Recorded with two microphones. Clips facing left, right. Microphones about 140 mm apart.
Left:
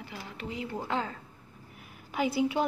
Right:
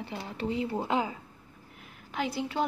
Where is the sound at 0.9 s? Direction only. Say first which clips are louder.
Right 2 dB; 15° right (ahead or behind).